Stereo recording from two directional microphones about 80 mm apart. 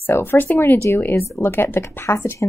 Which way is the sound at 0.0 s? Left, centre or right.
Left.